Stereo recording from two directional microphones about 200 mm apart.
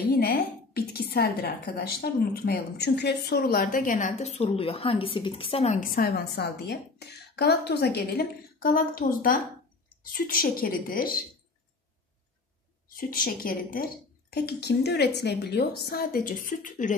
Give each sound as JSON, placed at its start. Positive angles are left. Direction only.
{"t": 0.2, "sound": "a woman's voice", "side_deg": 50}
{"t": 12.9, "sound": "a woman's voice", "side_deg": 45}